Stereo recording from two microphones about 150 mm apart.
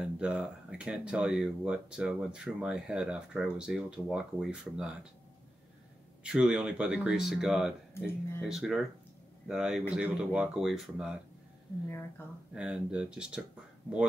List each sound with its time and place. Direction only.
0.0 s speech: 5° right (ahead or behind)
6.2 s speech: 5° right (ahead or behind)
7.9 s speech: 15° left (ahead or behind)
8.5 s speech: centre (ahead or behind)
12.5 s speech: 5° right (ahead or behind)